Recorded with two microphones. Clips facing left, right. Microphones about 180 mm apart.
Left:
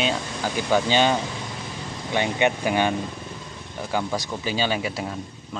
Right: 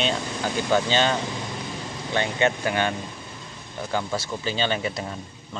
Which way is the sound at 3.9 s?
10° left (ahead or behind).